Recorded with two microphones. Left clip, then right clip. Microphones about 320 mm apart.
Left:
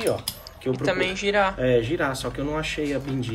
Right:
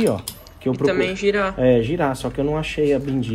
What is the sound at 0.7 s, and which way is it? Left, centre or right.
Speech, centre.